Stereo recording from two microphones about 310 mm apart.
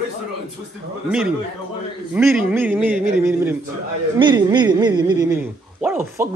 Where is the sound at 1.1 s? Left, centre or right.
Centre.